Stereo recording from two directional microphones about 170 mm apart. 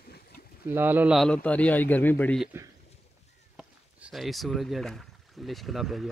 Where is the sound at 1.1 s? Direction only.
5° left (ahead or behind).